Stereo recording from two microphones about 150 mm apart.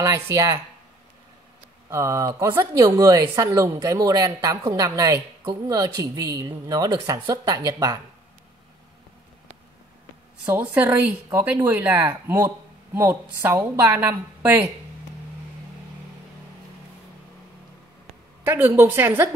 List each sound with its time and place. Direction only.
0.0 s a woman's voice: 25° right (ahead or behind)
1.9 s a woman's voice: 20° right (ahead or behind)
10.4 s speech: 10° right (ahead or behind)
18.4 s speech: 15° right (ahead or behind)